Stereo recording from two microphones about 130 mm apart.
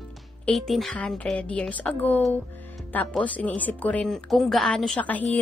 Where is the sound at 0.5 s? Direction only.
Centre (ahead or behind).